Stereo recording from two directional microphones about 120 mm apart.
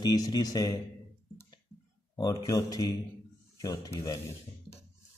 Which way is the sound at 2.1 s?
30° left (ahead or behind).